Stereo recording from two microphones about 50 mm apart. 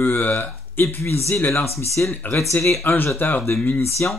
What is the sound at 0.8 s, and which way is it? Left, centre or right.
Speech, left.